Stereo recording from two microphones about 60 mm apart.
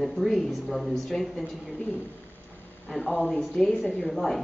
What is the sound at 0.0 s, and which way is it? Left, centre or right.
Speech, centre.